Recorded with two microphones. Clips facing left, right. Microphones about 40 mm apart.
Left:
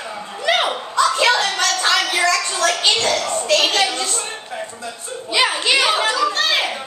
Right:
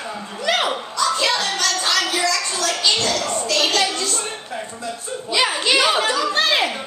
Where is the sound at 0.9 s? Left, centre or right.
Left.